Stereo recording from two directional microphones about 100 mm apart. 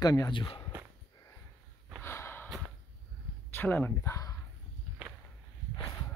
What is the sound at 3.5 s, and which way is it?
Speech, 20° left (ahead or behind).